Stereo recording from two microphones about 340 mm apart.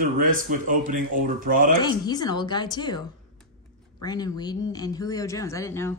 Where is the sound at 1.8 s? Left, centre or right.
Centre.